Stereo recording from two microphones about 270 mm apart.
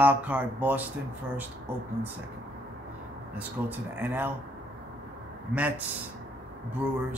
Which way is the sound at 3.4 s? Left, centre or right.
Centre.